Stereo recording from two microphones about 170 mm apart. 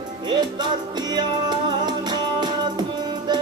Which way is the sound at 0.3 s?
25° right (ahead or behind).